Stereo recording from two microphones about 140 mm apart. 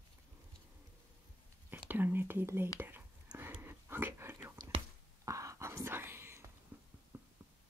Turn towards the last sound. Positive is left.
turn(degrees=-20)  # may be behind; listen again after turning